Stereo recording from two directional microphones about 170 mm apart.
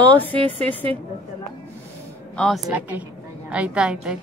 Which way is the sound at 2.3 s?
5° left (ahead or behind).